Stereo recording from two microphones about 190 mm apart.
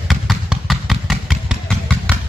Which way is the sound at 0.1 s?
Centre (ahead or behind).